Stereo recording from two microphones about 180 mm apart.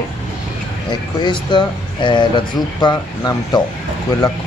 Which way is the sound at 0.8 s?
25° left (ahead or behind).